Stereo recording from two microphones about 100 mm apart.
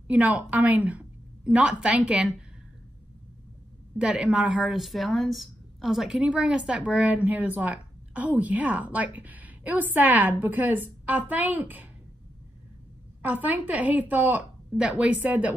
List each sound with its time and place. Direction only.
0.1 s a woman's voice: 15° right (ahead or behind)
4.0 s a woman's voice: 10° right (ahead or behind)
13.2 s a woman's voice: 15° right (ahead or behind)